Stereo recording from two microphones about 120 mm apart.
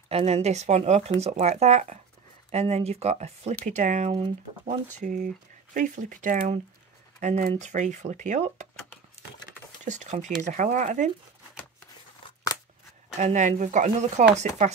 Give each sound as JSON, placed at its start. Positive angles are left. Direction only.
{"t": 0.1, "sound": "speech", "side_deg": -60}
{"t": 2.5, "sound": "speech", "side_deg": -60}
{"t": 3.6, "sound": "speech", "side_deg": -90}
{"t": 9.8, "sound": "speech", "side_deg": -80}
{"t": 10.4, "sound": "speech", "side_deg": -90}
{"t": 13.2, "sound": "speech", "side_deg": -85}